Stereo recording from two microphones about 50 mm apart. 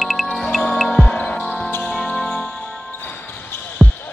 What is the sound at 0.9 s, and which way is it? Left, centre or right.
Music, left.